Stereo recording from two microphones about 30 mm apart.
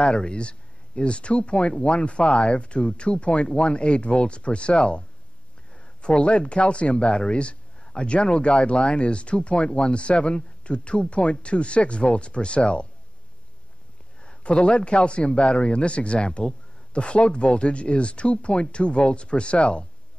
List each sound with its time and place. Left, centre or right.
0.0 s speech: left
5.7 s a sound: left
6.5 s speech: left
14.2 s speech: left